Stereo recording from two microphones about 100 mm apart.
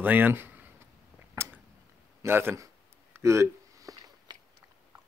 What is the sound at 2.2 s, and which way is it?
Speech, 20° right (ahead or behind).